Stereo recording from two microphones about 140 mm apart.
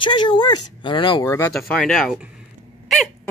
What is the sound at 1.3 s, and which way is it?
Speech, 20° left (ahead or behind).